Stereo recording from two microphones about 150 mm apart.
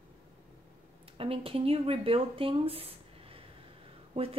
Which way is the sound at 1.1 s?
40° right (ahead or behind).